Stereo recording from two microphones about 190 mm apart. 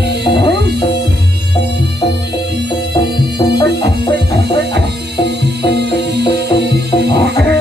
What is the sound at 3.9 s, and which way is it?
Music, 60° right (ahead or behind).